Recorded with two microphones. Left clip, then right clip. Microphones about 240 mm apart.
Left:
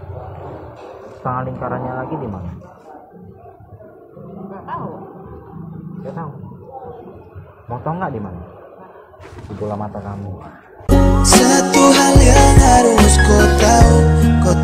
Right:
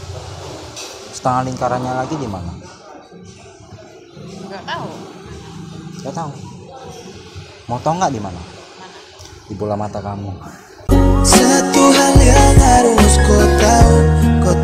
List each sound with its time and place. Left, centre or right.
1.2 s speech: right
7.7 s speech: right
9.7 s speech: right
10.9 s music: centre